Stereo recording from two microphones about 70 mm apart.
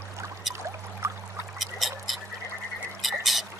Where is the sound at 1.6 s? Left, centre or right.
Centre.